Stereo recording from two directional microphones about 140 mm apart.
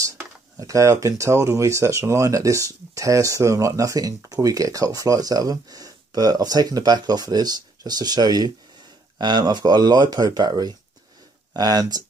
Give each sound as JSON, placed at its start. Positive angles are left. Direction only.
{"t": 0.0, "sound": "speech", "side_deg": -25}